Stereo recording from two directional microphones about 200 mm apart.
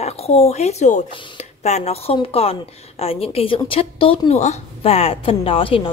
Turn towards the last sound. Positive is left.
turn(degrees=25)  # may be behind; listen again after turning